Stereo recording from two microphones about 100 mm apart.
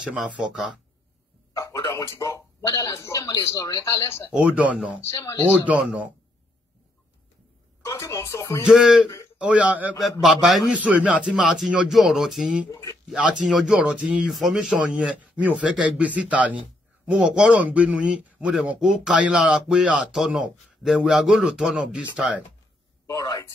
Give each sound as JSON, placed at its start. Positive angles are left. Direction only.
{"t": 1.5, "sound": "a man's voice", "side_deg": 30}
{"t": 4.3, "sound": "speech", "side_deg": -15}
{"t": 7.8, "sound": "speech", "side_deg": 30}
{"t": 8.6, "sound": "speech", "side_deg": -5}
{"t": 10.2, "sound": "a man's voice", "side_deg": 0}
{"t": 10.7, "sound": "speech", "side_deg": -15}
{"t": 23.0, "sound": "speech", "side_deg": 40}